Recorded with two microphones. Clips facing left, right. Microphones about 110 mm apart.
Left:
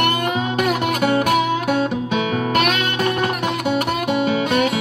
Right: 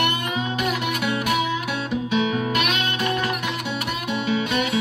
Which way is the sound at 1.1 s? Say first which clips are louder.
Left 6 dB; 55° left (ahead or behind).